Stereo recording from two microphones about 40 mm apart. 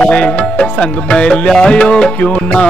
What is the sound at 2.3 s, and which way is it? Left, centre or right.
Music, left.